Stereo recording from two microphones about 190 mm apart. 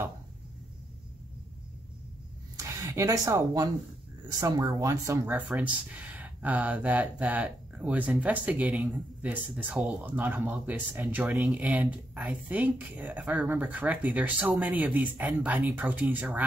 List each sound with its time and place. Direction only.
2.5 s speech: 15° right (ahead or behind)